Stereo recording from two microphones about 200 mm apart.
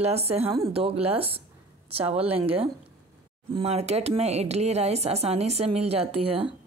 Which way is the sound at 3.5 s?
30° right (ahead or behind).